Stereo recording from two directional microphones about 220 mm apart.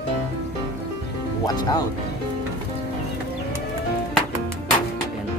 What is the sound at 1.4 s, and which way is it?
Speech, 20° left (ahead or behind).